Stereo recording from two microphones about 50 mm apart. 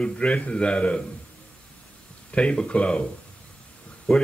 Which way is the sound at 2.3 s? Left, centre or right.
Left.